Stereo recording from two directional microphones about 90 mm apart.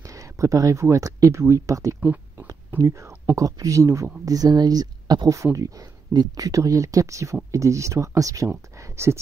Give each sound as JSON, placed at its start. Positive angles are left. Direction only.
{"t": 0.0, "sound": "speech", "side_deg": -35}